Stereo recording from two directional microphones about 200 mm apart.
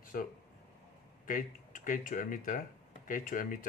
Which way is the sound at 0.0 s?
45° left (ahead or behind).